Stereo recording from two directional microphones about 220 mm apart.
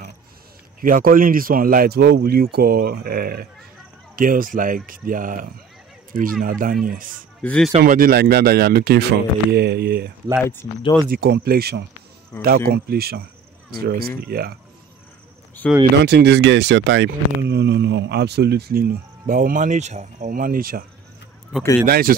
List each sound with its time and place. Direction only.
0.7 s speech: 40° right (ahead or behind)
7.4 s speech: 5° left (ahead or behind)
7.7 s speech: 40° right (ahead or behind)
10.4 s speech: 10° left (ahead or behind)
11.1 s speech: 50° right (ahead or behind)
15.6 s speech: 5° left (ahead or behind)
16.0 s speech: 50° right (ahead or behind)
21.8 s speech: 40° right (ahead or behind)